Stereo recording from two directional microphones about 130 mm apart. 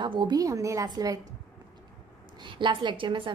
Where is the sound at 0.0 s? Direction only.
35° right (ahead or behind).